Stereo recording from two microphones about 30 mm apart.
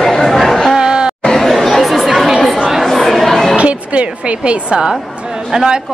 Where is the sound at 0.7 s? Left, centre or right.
Right.